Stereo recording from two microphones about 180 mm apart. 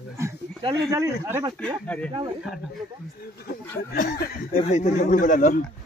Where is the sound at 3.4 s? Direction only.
50° left (ahead or behind).